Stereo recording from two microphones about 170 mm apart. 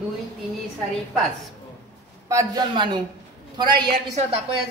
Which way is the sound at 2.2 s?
20° right (ahead or behind).